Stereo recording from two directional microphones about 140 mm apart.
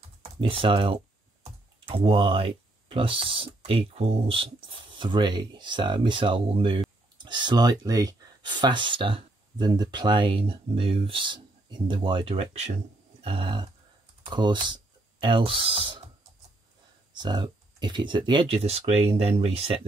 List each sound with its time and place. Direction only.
0.2 s speech: 40° right (ahead or behind)
13.2 s a sound: 40° right (ahead or behind)
14.3 s speech: 35° right (ahead or behind)
17.1 s speech: 35° right (ahead or behind)